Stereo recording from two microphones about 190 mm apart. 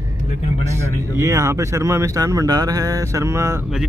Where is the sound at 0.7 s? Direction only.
15° right (ahead or behind).